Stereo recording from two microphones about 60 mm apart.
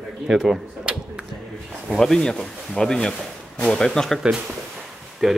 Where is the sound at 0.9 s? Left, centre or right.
Centre.